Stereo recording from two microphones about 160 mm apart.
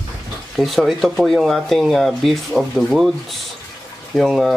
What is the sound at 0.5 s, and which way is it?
Speech, centre (ahead or behind).